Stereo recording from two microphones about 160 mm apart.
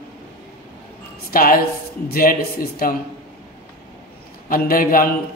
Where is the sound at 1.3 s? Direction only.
65° left (ahead or behind).